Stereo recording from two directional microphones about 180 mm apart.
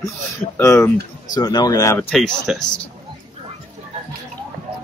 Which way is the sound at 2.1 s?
5° left (ahead or behind).